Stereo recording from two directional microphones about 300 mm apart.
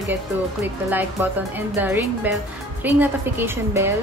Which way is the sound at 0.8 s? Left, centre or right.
Centre.